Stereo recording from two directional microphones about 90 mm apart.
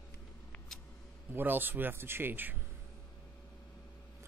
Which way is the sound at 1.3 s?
20° right (ahead or behind).